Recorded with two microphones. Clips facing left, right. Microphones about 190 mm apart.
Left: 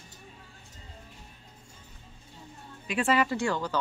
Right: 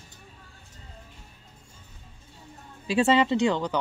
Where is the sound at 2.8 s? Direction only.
25° right (ahead or behind).